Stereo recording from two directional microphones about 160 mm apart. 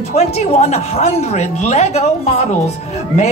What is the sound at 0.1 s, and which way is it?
A woman's voice, 45° left (ahead or behind).